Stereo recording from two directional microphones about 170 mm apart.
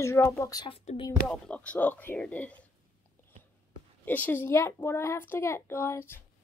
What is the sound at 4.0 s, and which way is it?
A woman's voice, 10° left (ahead or behind).